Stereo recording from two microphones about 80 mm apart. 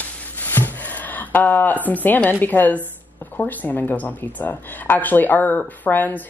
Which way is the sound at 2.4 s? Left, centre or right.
Left.